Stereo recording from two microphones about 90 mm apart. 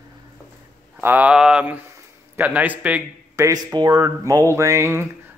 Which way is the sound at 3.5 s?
50° right (ahead or behind).